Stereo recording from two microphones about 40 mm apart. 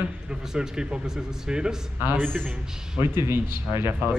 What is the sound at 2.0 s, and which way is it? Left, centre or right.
Speech, right.